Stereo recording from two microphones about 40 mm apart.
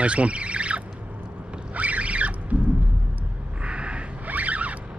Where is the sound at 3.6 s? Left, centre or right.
Right.